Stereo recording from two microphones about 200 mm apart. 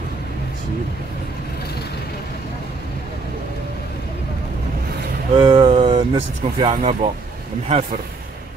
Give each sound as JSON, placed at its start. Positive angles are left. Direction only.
{"t": 5.3, "sound": "speech", "side_deg": -25}